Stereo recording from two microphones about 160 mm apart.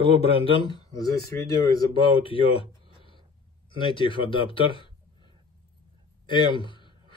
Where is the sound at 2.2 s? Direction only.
35° left (ahead or behind).